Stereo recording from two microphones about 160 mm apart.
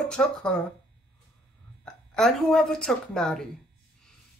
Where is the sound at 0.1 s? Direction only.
5° left (ahead or behind).